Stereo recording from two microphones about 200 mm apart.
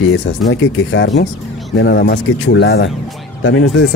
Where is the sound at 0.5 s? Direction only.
70° left (ahead or behind).